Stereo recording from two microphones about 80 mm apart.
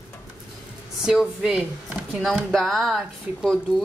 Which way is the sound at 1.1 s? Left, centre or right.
Centre.